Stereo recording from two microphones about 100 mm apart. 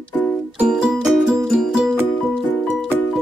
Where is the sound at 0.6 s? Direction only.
10° right (ahead or behind).